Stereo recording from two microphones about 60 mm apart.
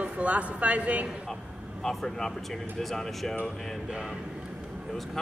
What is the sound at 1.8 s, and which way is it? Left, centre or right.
Speech, centre.